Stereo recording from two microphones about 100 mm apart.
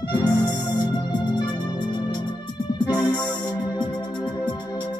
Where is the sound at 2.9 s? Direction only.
45° left (ahead or behind).